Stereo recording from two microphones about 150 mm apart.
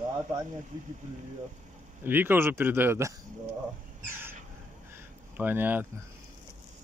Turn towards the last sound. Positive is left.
turn(degrees=-15)  # may be behind; listen again after turning